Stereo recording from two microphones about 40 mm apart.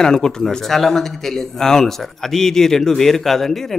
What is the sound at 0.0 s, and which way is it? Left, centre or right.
Speech, centre.